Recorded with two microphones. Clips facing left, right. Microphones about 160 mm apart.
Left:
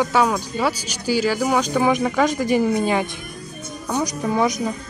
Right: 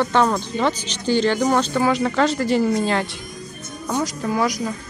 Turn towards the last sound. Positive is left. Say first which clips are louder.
# left 1 dB
turn(degrees=20)  # may be behind; listen again after turning